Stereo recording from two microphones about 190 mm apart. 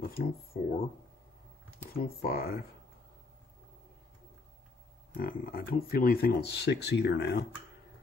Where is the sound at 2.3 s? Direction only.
50° left (ahead or behind).